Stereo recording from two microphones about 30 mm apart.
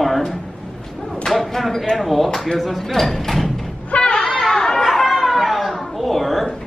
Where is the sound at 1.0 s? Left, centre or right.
Centre.